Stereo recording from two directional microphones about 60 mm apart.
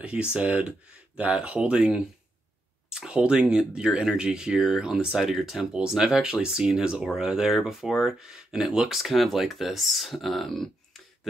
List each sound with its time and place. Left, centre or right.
0.0 s speech: centre